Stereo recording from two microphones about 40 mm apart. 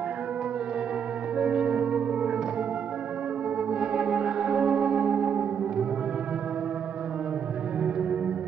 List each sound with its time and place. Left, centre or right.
1.4 s music: centre
3.8 s music: centre
7.8 s music: right